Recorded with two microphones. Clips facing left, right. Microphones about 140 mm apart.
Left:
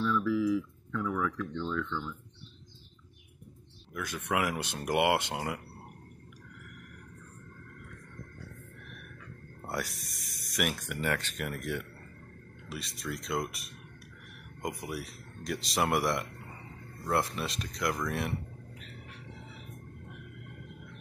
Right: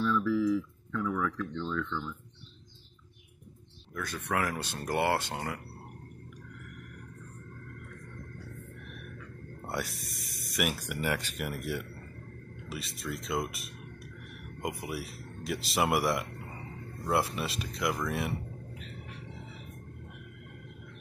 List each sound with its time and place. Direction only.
0.2 s speech: 15° left (ahead or behind)
3.9 s speech: 15° left (ahead or behind)
9.7 s speech: centre (ahead or behind)